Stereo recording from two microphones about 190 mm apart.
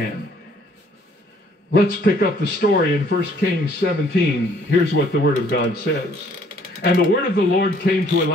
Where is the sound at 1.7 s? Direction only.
55° left (ahead or behind).